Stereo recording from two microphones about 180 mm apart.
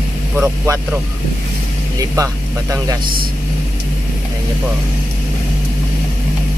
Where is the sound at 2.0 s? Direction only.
20° right (ahead or behind).